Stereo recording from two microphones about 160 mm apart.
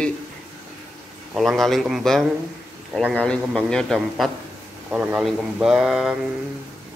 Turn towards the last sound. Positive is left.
turn(degrees=0)  # may be behind; listen again after turning